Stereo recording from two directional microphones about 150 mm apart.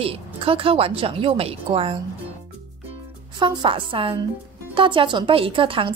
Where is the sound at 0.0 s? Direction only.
40° right (ahead or behind).